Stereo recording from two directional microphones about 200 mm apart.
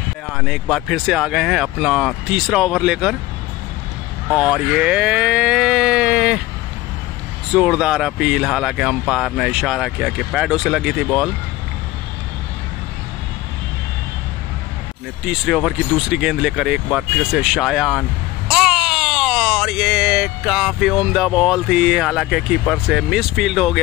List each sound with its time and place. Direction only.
0.3 s speech: centre (ahead or behind)
4.3 s speech: centre (ahead or behind)
7.5 s speech: centre (ahead or behind)
15.2 s speech: centre (ahead or behind)